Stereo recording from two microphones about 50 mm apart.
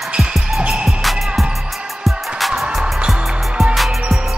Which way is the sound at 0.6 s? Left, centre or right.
Centre.